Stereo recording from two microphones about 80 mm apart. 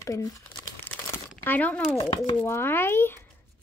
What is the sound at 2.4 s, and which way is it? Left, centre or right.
Speech, left.